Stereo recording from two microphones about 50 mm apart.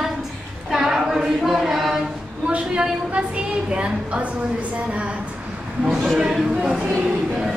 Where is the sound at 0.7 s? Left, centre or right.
Centre.